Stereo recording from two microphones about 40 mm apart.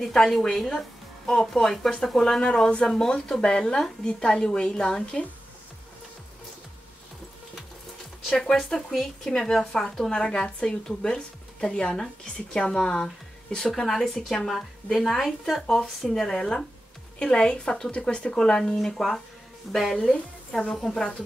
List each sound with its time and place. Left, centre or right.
0.0 s speech: centre
3.3 s a woman's voice: left
8.4 s speech: centre
14.5 s speech: centre
16.3 s a woman's voice: centre
18.9 s speech: centre